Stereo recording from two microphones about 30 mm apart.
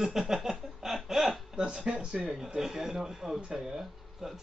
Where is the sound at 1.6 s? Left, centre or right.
Right.